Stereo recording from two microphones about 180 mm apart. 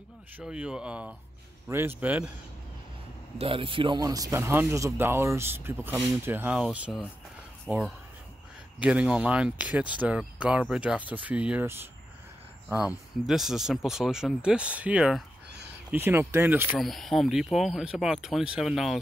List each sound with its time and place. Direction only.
0.4 s speech: 5° right (ahead or behind)
3.3 s speech: 30° right (ahead or behind); by 11.9 s 10° right (ahead or behind)
12.8 s speech: centre (ahead or behind)
16.7 s speech: centre (ahead or behind)